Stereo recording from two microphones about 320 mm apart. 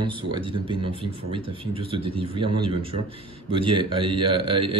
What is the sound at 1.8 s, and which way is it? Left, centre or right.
Speech, centre.